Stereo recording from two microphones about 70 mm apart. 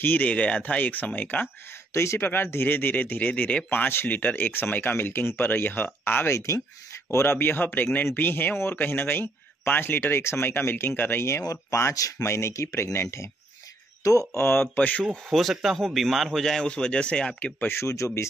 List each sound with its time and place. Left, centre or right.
0.0 s speech: left
2.0 s speech: left
6.3 s speech: left
11.4 s speech: left
12.3 s speech: left
14.3 s speech: left
15.2 s speech: centre
17.6 s speech: left